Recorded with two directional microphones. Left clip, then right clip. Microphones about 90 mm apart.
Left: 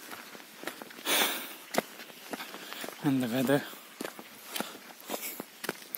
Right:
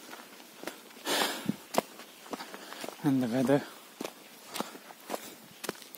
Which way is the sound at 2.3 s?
10° left (ahead or behind).